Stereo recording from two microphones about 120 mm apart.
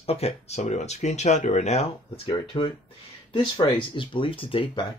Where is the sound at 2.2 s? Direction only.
45° left (ahead or behind).